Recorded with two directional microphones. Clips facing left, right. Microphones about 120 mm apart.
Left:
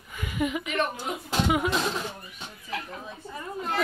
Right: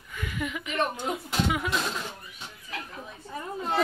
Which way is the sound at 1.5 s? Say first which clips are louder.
Left 4 dB; 25° left (ahead or behind).